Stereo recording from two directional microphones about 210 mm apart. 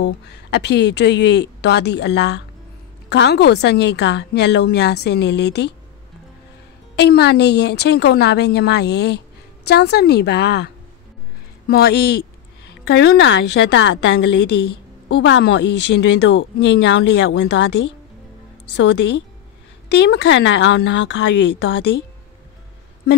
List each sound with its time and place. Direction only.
0.0 s a woman's voice: 55° left (ahead or behind)
7.0 s a woman's voice: 50° left (ahead or behind)